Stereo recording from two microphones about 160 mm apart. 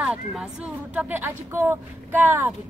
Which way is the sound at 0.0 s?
Centre (ahead or behind).